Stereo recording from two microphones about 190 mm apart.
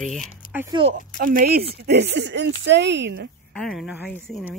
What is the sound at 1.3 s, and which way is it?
Speech, 50° right (ahead or behind).